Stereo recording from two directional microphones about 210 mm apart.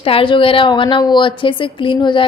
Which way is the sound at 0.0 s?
25° left (ahead or behind).